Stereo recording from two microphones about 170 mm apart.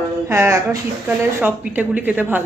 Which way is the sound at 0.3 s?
15° right (ahead or behind).